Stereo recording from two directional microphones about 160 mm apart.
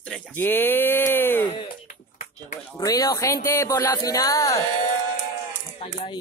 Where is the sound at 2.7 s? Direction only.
25° left (ahead or behind).